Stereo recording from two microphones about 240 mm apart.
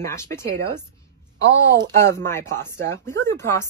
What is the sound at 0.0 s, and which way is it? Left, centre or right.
Speech, centre.